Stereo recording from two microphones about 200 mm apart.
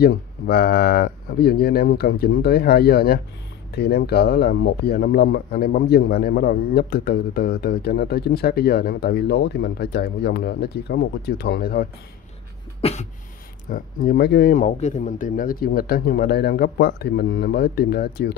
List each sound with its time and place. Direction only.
0.0 s speech: 50° left (ahead or behind)
12.8 s cough: 30° left (ahead or behind)
13.7 s speech: 45° left (ahead or behind)